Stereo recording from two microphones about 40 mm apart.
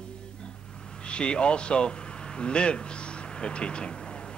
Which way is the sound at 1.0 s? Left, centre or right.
Left.